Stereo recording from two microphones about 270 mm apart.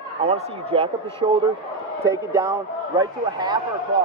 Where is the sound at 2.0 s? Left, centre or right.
Centre.